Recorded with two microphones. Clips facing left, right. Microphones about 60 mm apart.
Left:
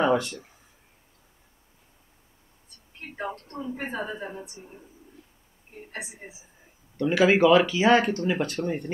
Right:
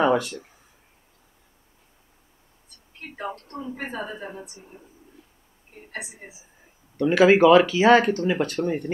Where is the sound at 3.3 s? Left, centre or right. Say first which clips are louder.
Right 1 dB; right.